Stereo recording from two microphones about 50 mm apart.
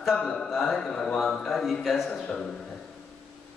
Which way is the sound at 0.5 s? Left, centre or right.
Centre.